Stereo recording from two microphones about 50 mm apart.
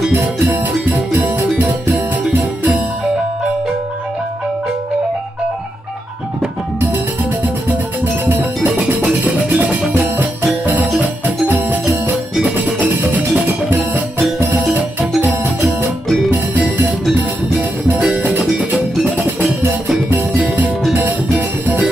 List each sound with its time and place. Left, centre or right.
0.1 s music: right
7.4 s music: right
13.1 s music: right
14.7 s music: right
17.6 s music: right
19.1 s music: right
20.9 s music: right